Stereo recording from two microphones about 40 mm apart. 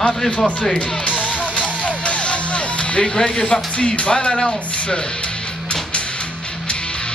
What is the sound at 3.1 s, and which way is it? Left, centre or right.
Speech, centre.